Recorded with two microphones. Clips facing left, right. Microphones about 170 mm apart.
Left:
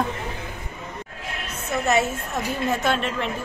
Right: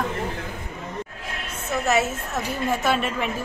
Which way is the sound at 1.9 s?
5° right (ahead or behind).